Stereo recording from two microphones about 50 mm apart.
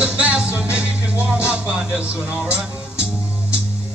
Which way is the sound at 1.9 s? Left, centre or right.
Right.